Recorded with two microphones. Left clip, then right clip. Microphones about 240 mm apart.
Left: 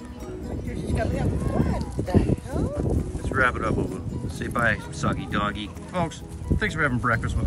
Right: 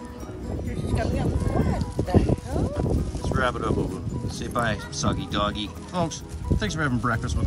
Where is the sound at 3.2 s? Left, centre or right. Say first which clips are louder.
Left 3 dB; centre.